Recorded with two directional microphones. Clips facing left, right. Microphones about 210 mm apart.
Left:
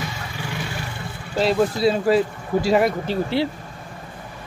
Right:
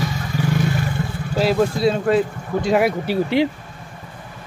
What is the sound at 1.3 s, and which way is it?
Speech, centre (ahead or behind).